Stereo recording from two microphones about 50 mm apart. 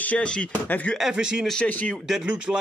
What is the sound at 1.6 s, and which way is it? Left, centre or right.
Speech, left.